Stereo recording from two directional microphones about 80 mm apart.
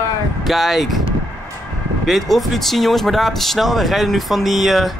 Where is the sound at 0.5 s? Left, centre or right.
Centre.